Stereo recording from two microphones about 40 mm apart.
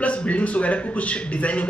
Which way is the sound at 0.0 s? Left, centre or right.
Left.